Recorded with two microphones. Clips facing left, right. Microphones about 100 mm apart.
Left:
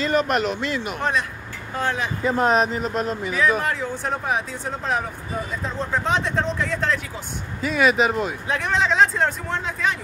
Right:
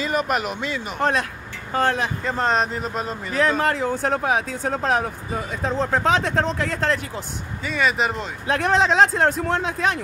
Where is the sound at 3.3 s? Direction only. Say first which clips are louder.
Right 3 dB; 55° right (ahead or behind).